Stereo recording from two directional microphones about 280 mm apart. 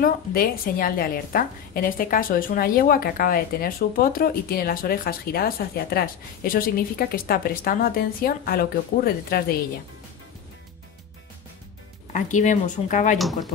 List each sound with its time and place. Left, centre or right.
0.0 s a woman's voice: left
12.1 s speech: left
13.2 s speech: centre